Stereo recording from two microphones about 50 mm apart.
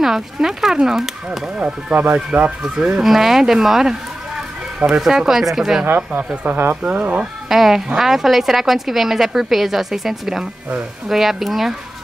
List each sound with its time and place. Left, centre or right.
0.0 s speech: centre
1.6 s speech: right
3.0 s speech: centre
5.9 s speech: right
6.8 s speech: right
7.4 s a woman's voice: centre